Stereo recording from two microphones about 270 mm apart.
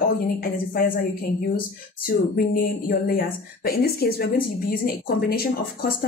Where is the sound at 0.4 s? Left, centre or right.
Left.